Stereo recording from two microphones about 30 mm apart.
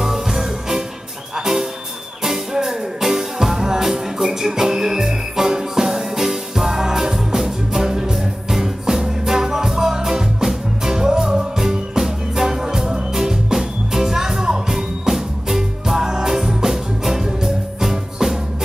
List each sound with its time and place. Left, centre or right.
0.0 s music: centre